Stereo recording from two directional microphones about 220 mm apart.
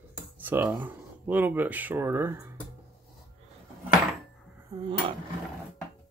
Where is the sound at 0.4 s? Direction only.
10° right (ahead or behind).